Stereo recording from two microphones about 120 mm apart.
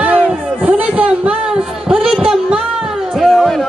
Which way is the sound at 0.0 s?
10° right (ahead or behind).